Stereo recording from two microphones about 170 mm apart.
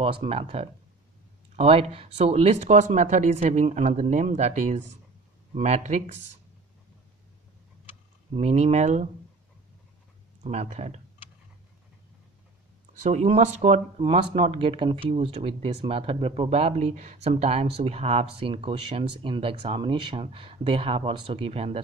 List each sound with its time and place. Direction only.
0.0 s speech: 35° right (ahead or behind)
8.3 s speech: 40° right (ahead or behind)
10.4 s speech: 40° right (ahead or behind)
13.0 s speech: 40° right (ahead or behind)